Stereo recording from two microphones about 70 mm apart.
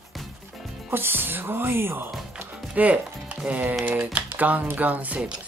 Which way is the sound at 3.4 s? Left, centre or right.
Right.